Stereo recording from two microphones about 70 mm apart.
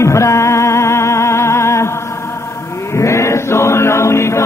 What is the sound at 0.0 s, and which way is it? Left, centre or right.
Music, left.